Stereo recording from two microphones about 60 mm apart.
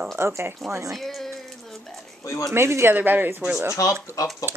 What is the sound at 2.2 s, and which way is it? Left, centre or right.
Speech, left.